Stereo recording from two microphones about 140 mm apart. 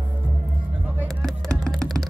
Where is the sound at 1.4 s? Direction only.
5° left (ahead or behind).